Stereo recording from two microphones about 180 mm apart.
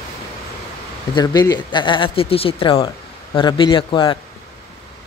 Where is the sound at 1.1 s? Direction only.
20° left (ahead or behind).